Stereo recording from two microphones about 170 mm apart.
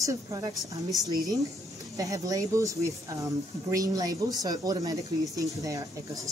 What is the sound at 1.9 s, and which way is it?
Speech, 20° right (ahead or behind).